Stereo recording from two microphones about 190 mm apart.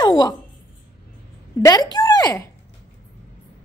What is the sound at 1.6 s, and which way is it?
Speech, 20° left (ahead or behind).